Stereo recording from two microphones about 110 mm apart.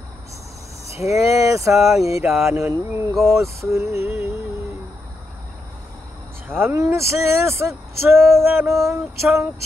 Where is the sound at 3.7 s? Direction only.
25° right (ahead or behind).